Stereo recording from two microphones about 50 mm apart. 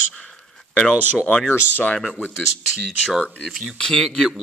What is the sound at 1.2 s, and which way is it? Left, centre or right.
Speech, left.